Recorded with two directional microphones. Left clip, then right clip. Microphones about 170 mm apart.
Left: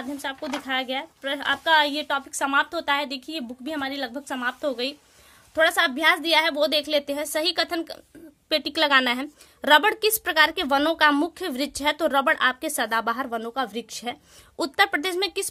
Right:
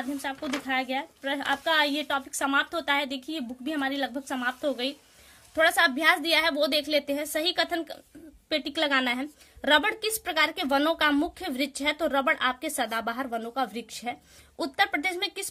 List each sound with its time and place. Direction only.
0.2 s a woman's voice: 25° left (ahead or behind)